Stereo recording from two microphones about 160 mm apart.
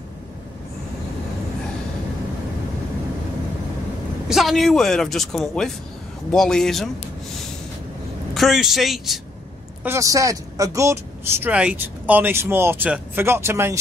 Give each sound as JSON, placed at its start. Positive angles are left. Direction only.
{"t": 4.3, "sound": "speech", "side_deg": 0}
{"t": 8.4, "sound": "speech", "side_deg": 0}
{"t": 9.8, "sound": "speech", "side_deg": -20}
{"t": 11.4, "sound": "speech", "side_deg": -10}